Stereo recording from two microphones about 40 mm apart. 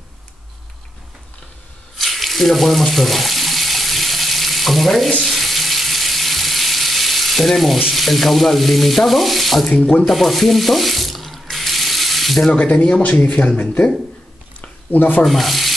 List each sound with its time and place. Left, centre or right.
2.0 s water tap: centre
5.2 s frying: centre
10.0 s sink: centre
12.5 s speech: left
14.6 s a sound: left
15.2 s frying: centre